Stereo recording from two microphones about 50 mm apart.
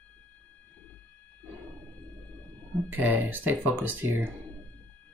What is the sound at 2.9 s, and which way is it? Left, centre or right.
Speech, right.